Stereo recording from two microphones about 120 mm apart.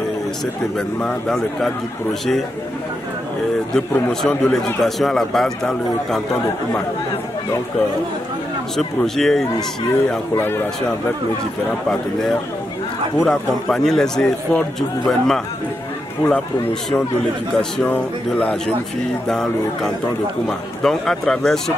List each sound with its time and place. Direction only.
0.7 s a man's voice: 5° left (ahead or behind)
3.7 s a man's voice: 5° left (ahead or behind)
8.7 s a man's voice: 5° left (ahead or behind)
10.3 s speech: 20° left (ahead or behind)
11.9 s a man's voice: 5° left (ahead or behind)
17.6 s a man's voice: 5° left (ahead or behind)